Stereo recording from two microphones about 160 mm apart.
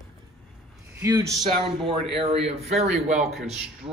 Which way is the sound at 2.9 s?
40° right (ahead or behind).